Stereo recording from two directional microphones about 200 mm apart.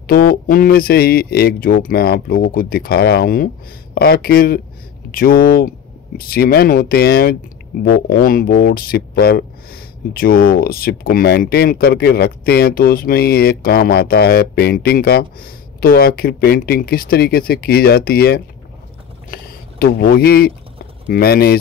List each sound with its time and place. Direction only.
0.0 s speech: 50° left (ahead or behind)